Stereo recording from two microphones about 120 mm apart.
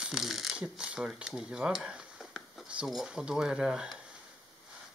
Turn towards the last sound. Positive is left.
turn(degrees=-5)  # may be behind; listen again after turning